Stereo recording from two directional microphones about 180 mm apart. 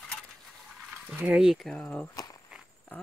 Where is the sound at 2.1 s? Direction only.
20° left (ahead or behind).